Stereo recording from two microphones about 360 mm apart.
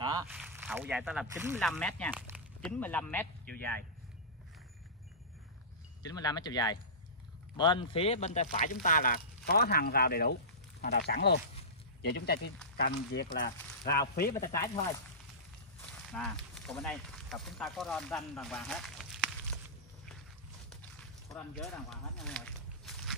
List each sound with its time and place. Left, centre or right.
0.0 s speech: centre
6.0 s speech: centre; by 14.3 s left
15.8 s speech: centre
21.3 s speech: centre